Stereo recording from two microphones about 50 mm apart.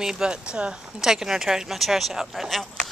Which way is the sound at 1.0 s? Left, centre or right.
Centre.